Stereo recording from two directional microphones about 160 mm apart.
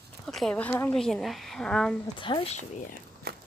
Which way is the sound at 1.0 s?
Centre (ahead or behind).